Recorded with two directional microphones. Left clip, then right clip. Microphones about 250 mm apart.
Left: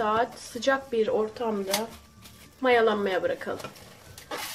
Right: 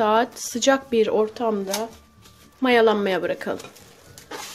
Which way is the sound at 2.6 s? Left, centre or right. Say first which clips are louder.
Right 4 dB; right.